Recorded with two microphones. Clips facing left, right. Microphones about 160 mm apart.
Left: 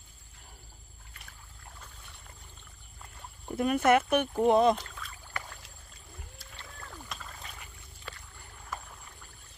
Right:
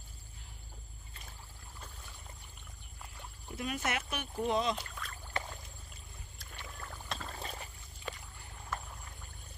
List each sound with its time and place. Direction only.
3.4 s speech: 55° left (ahead or behind)
5.4 s a sound: 25° right (ahead or behind)
6.5 s rowboat: 10° right (ahead or behind)
7.1 s rowboat: 30° right (ahead or behind)
8.1 s boat: 20° right (ahead or behind)